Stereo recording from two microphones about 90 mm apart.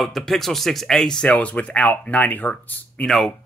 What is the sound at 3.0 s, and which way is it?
Speech, 5° left (ahead or behind).